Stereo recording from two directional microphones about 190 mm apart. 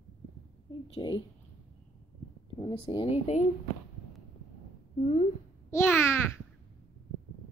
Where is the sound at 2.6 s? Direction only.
30° left (ahead or behind).